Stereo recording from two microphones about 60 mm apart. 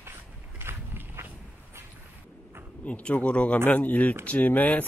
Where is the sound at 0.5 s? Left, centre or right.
Right.